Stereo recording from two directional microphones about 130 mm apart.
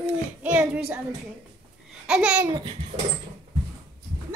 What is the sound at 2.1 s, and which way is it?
Speech, 5° right (ahead or behind).